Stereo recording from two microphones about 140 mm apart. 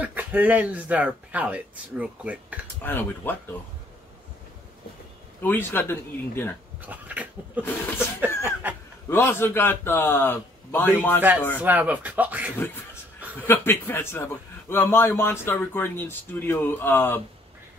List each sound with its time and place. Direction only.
0.0 s speech: 10° right (ahead or behind)
2.8 s a man's voice: 15° left (ahead or behind)
5.4 s a man's voice: 15° left (ahead or behind)
6.8 s a sound: 10° right (ahead or behind)
8.3 s a sound: 20° left (ahead or behind)
9.1 s a man's voice: 15° left (ahead or behind)
11.1 s speech: 10° right (ahead or behind)
13.4 s a man's voice: 15° left (ahead or behind)